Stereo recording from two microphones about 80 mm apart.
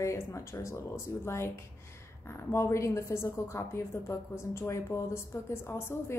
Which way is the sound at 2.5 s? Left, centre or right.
Left.